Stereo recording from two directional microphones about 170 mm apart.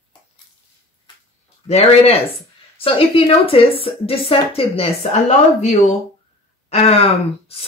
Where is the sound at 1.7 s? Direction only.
40° left (ahead or behind).